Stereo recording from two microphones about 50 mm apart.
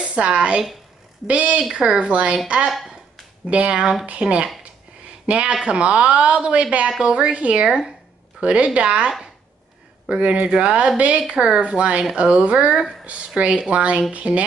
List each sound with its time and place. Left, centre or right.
0.0 s speech: right
1.7 s speech: centre
2.0 s speech: right
2.7 s a sound: centre
3.4 s speech: right